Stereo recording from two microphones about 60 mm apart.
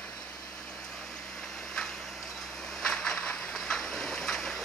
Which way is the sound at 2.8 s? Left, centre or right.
Centre.